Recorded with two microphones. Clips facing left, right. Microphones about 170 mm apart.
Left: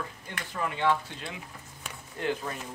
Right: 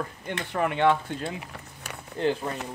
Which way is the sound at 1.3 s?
75° right (ahead or behind).